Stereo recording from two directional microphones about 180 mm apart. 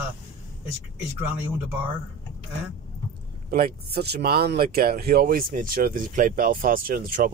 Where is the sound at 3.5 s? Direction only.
55° right (ahead or behind).